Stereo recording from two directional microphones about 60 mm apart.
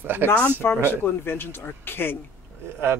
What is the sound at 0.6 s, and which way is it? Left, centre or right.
Speech, left.